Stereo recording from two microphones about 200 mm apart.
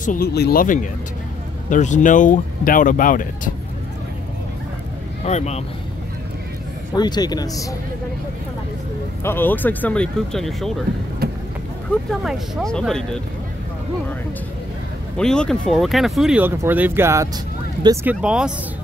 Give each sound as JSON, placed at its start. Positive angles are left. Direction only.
{"t": 0.0, "sound": "speech", "side_deg": 45}
{"t": 5.2, "sound": "speech", "side_deg": 35}
{"t": 7.0, "sound": "speech", "side_deg": 20}
{"t": 9.2, "sound": "speech", "side_deg": 10}
{"t": 11.2, "sound": "vehicle", "side_deg": -50}
{"t": 12.1, "sound": "speech", "side_deg": 0}
{"t": 15.1, "sound": "speech", "side_deg": 5}